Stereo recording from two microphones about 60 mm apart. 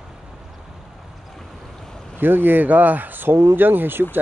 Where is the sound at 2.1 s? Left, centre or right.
Right.